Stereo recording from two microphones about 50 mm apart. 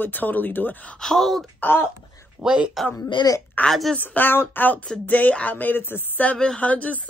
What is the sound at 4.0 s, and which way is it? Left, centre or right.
Speech, left.